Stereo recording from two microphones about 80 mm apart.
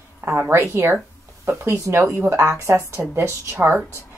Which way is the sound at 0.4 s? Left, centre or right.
Right.